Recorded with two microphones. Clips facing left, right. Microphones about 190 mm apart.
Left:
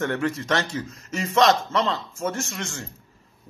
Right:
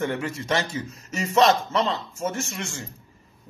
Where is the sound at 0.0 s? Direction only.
10° right (ahead or behind).